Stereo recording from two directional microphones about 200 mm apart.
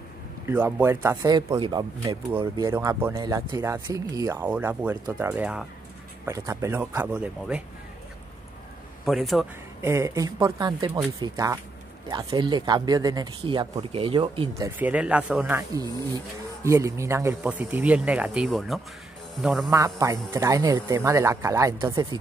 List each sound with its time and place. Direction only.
0.5 s speech: 10° right (ahead or behind)
6.2 s speech: 15° right (ahead or behind)
9.0 s a man's voice: centre (ahead or behind)
9.8 s speech: 15° right (ahead or behind)
14.6 s a man's voice: 5° right (ahead or behind)
19.7 s speech: 15° right (ahead or behind)